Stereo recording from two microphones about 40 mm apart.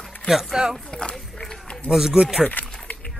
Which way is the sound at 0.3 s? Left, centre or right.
Centre.